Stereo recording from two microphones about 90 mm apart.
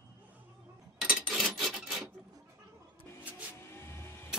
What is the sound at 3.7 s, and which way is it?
Vehicle, 25° left (ahead or behind).